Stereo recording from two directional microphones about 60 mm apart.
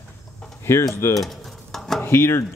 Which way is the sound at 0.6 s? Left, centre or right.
Left.